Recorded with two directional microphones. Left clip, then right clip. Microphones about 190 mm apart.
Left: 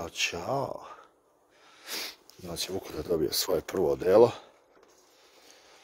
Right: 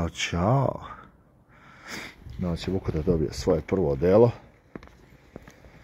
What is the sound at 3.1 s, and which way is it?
Speech, 45° left (ahead or behind).